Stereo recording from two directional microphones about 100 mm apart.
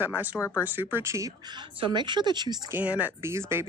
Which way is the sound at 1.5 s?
55° right (ahead or behind).